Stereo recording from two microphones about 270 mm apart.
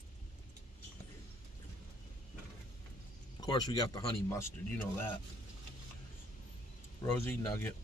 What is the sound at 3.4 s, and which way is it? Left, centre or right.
Speech, centre.